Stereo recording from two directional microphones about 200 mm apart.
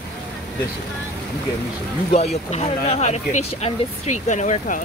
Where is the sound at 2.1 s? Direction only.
30° left (ahead or behind).